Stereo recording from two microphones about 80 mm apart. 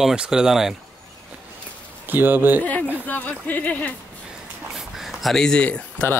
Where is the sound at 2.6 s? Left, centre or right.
Centre.